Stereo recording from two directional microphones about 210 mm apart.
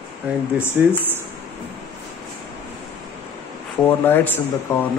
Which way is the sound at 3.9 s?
10° left (ahead or behind).